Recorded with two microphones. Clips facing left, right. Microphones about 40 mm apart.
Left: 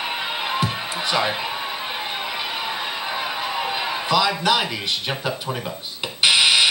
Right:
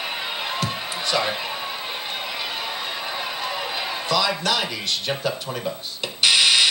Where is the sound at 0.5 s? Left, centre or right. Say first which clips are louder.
Left 3 dB; centre.